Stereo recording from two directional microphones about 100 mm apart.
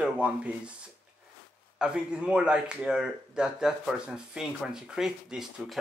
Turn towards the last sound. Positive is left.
turn(degrees=-5)  # may be behind; listen again after turning